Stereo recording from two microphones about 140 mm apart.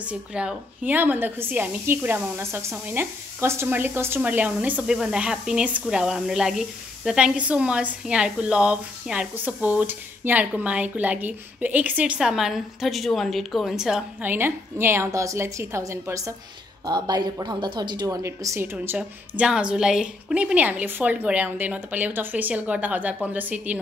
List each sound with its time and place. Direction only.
0.0 s speech: 5° right (ahead or behind)